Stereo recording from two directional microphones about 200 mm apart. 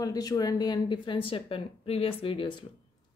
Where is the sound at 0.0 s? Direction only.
20° left (ahead or behind).